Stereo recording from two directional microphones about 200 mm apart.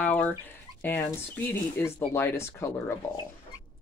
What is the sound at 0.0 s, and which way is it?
Speech, 10° left (ahead or behind).